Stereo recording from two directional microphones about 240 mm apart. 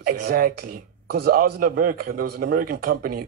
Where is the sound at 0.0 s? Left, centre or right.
Right.